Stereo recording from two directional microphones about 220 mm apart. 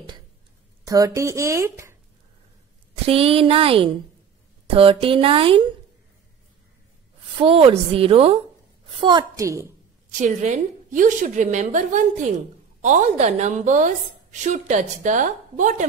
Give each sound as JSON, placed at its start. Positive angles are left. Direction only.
{"t": 0.8, "sound": "a woman's voice", "side_deg": -15}
{"t": 3.1, "sound": "a woman's voice", "side_deg": -25}
{"t": 7.3, "sound": "a woman's voice", "side_deg": -25}
{"t": 10.2, "sound": "a woman's voice", "side_deg": -35}